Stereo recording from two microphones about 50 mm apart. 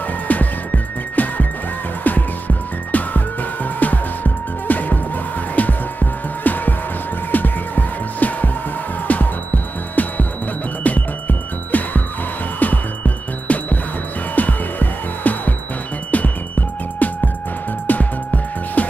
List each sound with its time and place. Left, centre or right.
0.3 s music: left